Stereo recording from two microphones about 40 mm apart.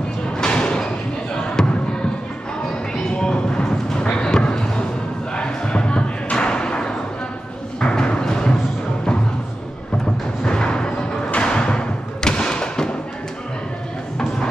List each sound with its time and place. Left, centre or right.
0.4 s a sound: left
1.6 s basketball bounce: centre
3.0 s a sound: centre
4.2 s basketball bounce: centre
5.3 s thump: left
7.8 s music: left
10.4 s music: left
11.4 s thump: left